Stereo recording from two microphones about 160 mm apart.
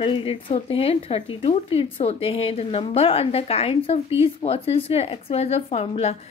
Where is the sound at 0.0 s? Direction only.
35° left (ahead or behind).